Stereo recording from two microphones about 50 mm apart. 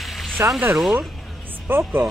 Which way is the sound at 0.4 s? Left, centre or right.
Right.